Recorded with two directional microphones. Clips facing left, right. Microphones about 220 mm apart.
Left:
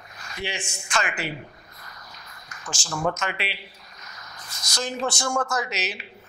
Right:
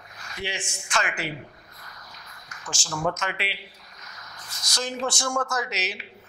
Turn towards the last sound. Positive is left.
turn(degrees=10)  # may be behind; listen again after turning